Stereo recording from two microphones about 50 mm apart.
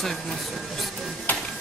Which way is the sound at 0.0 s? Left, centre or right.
Centre.